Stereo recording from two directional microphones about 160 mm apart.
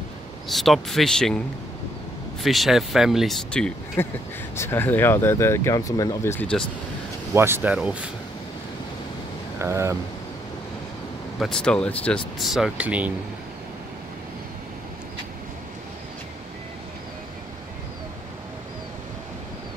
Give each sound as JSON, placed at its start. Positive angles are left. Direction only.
{"t": 0.5, "sound": "speech", "side_deg": 0}
{"t": 2.4, "sound": "speech", "side_deg": 0}
{"t": 4.0, "sound": "speech", "side_deg": 15}
{"t": 7.3, "sound": "speech", "side_deg": -15}
{"t": 9.6, "sound": "speech", "side_deg": -15}
{"t": 11.3, "sound": "speech", "side_deg": 5}